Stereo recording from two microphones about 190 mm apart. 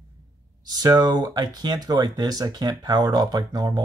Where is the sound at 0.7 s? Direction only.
20° right (ahead or behind).